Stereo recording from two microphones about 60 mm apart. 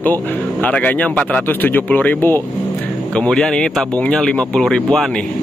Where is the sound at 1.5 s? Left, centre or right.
Left.